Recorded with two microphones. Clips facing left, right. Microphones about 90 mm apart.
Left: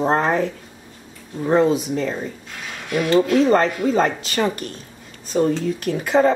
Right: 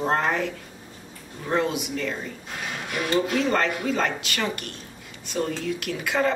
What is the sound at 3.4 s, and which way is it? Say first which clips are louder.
Speech: left 7 dB; 35° left (ahead or behind).